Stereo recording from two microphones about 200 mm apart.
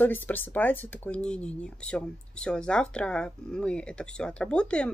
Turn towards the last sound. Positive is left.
turn(degrees=5)  # may be behind; listen again after turning